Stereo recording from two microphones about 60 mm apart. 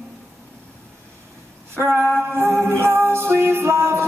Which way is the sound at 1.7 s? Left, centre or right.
Right.